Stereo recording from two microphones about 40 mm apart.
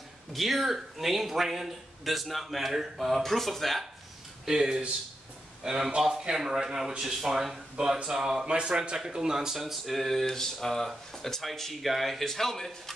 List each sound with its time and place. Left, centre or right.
0.3 s a man's voice: centre
4.5 s a man's voice: centre
9.6 s a man's voice: centre